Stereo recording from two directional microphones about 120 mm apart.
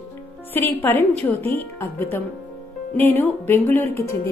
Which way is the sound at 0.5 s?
20° left (ahead or behind).